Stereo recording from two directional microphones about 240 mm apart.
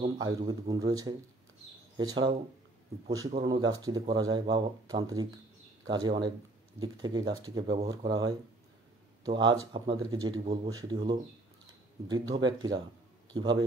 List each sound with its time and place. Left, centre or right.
0.0 s speech: right
9.7 s speech: centre